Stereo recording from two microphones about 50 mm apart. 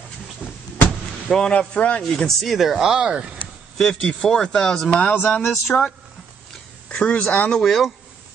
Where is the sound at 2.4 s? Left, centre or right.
Centre.